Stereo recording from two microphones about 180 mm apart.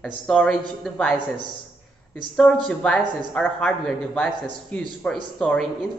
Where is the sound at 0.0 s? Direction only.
5° left (ahead or behind).